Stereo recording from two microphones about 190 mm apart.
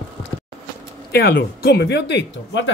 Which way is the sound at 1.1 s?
55° left (ahead or behind).